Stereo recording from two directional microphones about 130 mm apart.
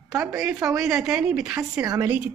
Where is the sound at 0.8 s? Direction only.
5° right (ahead or behind).